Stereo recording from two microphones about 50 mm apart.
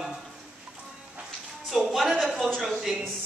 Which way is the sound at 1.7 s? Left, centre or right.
Centre.